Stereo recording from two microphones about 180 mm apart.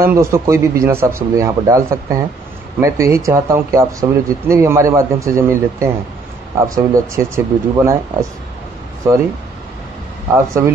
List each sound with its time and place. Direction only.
0.0 s speech: 15° right (ahead or behind)
10.3 s speech: 15° right (ahead or behind)